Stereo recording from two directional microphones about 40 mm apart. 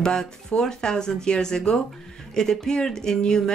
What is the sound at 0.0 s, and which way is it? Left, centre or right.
Speech, centre.